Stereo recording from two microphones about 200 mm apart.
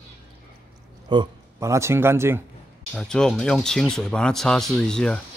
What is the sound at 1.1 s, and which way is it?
A man's voice, 25° right (ahead or behind).